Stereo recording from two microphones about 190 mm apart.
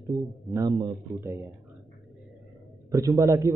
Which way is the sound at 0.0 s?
15° right (ahead or behind).